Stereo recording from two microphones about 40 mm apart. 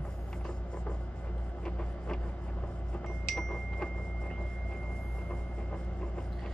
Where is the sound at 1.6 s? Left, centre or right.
Left.